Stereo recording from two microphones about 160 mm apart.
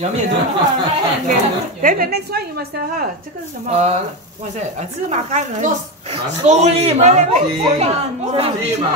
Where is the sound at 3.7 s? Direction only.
45° right (ahead or behind).